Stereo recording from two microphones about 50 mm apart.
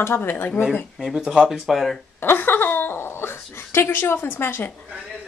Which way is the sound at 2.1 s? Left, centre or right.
Left.